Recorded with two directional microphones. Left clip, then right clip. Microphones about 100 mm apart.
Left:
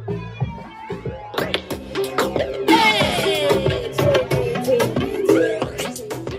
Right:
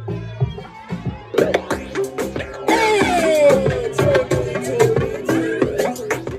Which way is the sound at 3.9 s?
Centre (ahead or behind).